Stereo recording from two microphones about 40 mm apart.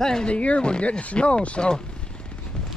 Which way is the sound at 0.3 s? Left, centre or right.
Left.